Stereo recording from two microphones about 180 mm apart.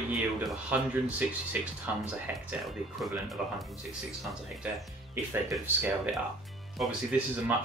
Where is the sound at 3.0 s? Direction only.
Centre (ahead or behind).